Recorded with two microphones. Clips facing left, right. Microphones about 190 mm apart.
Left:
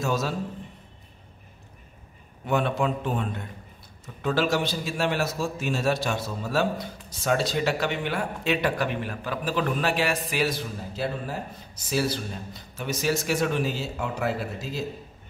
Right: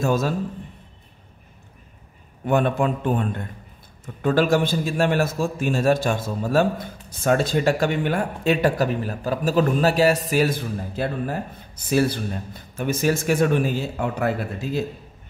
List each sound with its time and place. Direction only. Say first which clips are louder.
0.0 s a man's voice: right 5 dB; 50° right (ahead or behind)
2.4 s a man's voice: right 4 dB; 50° right (ahead or behind)